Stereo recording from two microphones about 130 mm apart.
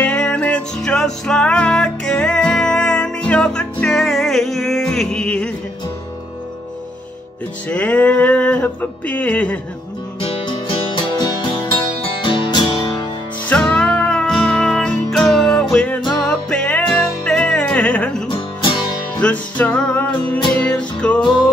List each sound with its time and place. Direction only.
0.0 s music: 10° left (ahead or behind)
7.7 s a sound: 10° left (ahead or behind)
10.2 s music: 40° left (ahead or behind)
13.5 s music: 10° left (ahead or behind)
18.3 s music: 40° left (ahead or behind)
19.2 s music: 10° left (ahead or behind)